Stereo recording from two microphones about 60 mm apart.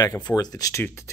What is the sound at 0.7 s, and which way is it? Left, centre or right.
Speech, left.